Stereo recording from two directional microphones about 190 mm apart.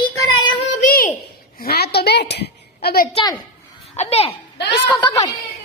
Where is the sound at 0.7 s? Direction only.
45° left (ahead or behind).